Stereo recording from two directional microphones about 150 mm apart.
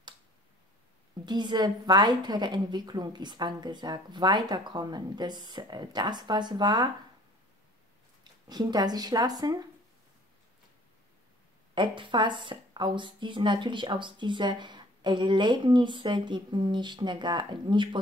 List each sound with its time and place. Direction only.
1.2 s a woman's voice: 30° right (ahead or behind)
8.2 s speech: 25° right (ahead or behind)
11.7 s a woman's voice: 30° right (ahead or behind)